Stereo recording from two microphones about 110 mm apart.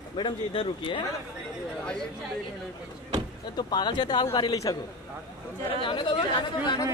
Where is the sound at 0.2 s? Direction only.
55° left (ahead or behind).